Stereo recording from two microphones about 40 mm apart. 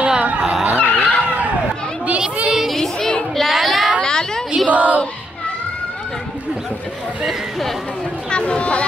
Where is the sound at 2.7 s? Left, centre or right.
Centre.